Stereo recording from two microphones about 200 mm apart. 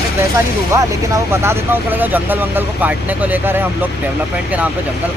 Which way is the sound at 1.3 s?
10° right (ahead or behind).